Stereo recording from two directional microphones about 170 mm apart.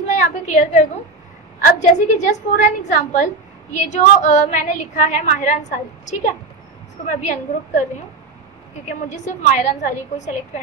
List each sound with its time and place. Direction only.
0.1 s a woman's voice: 45° left (ahead or behind)
8.8 s a woman's voice: 45° left (ahead or behind)